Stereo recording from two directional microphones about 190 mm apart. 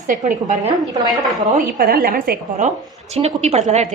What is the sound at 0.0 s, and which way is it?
Speech, 45° right (ahead or behind).